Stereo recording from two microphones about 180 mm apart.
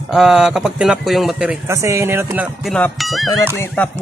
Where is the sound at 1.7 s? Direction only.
15° right (ahead or behind).